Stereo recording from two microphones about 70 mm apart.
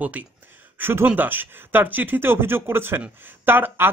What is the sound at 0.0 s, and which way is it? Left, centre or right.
Speech, right.